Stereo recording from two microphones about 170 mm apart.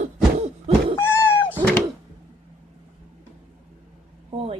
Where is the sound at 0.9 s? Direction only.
15° left (ahead or behind).